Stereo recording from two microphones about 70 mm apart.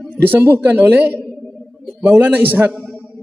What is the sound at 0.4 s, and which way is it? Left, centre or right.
Speech, right.